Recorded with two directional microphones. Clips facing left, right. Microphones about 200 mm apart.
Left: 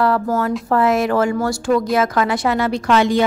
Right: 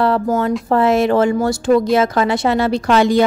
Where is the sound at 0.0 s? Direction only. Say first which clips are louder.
Right 2 dB; 25° right (ahead or behind).